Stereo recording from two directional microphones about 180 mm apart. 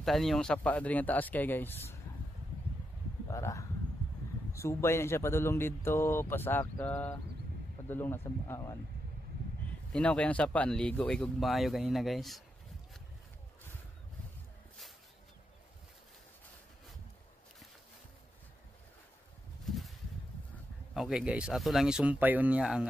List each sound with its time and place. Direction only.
0.0 s speech: centre (ahead or behind)
3.3 s speech: 15° left (ahead or behind)
9.9 s speech: 5° left (ahead or behind)
19.6 s a sound: centre (ahead or behind)
20.9 s speech: centre (ahead or behind)